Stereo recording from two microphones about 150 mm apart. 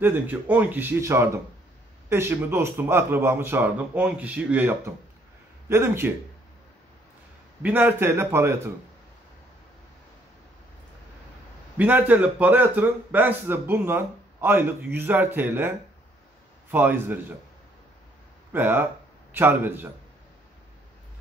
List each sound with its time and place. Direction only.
0.0 s a man's voice: 10° right (ahead or behind)
7.6 s a man's voice: 10° right (ahead or behind)
11.8 s a man's voice: 10° right (ahead or behind)
16.7 s a man's voice: 15° right (ahead or behind)
18.5 s a man's voice: 15° right (ahead or behind)